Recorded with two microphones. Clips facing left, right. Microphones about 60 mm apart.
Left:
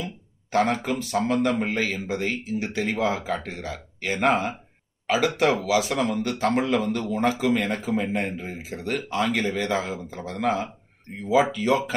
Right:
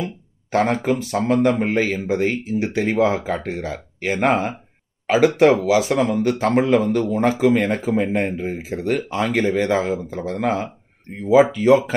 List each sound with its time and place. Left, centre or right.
0.7 s speech: right
1.7 s a man's voice: right